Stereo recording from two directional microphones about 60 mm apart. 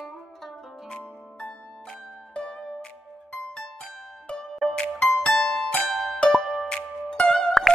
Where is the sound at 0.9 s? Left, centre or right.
Centre.